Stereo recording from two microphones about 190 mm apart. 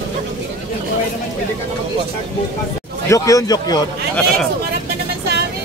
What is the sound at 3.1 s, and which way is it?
Speech, 15° left (ahead or behind).